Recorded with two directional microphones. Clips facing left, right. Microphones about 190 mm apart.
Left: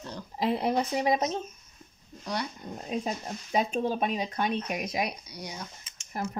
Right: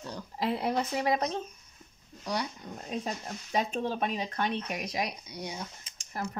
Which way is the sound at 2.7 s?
15° left (ahead or behind).